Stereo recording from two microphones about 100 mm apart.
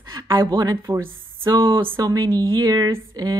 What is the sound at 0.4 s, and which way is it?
A woman's voice, 45° right (ahead or behind).